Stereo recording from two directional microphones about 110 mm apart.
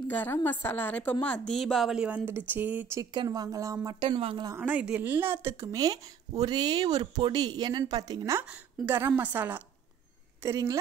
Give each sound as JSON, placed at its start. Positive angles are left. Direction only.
{"t": 0.1, "sound": "a woman's voice", "side_deg": 20}
{"t": 3.0, "sound": "speech", "side_deg": -35}
{"t": 4.6, "sound": "speech", "side_deg": -15}
{"t": 8.2, "sound": "speech", "side_deg": -25}
{"t": 10.4, "sound": "speech", "side_deg": -30}